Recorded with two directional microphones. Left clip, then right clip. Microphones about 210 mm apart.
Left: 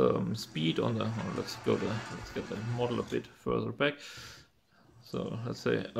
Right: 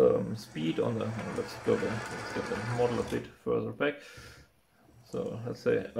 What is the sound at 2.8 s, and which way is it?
Speech, 40° left (ahead or behind).